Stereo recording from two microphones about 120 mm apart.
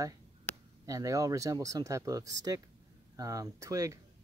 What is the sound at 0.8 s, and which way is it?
Speech, 30° right (ahead or behind).